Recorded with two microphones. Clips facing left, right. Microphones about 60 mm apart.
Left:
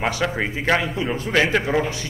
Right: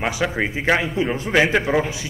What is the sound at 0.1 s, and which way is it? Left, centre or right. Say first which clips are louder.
A man's voice: right 1 dB; centre.